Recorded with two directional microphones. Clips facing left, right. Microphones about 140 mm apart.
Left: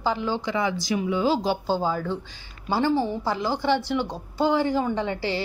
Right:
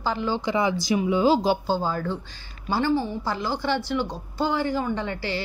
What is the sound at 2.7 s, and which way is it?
A woman's voice, 25° left (ahead or behind).